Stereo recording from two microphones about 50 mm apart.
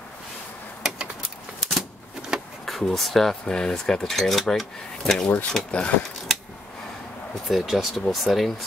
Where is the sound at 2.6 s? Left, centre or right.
Centre.